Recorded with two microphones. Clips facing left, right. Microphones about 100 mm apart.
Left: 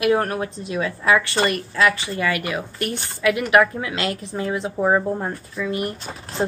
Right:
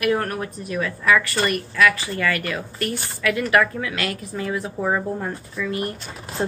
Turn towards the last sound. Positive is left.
turn(degrees=35)  # may be behind; listen again after turning